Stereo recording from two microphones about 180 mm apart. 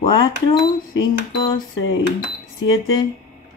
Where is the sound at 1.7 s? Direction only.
90° left.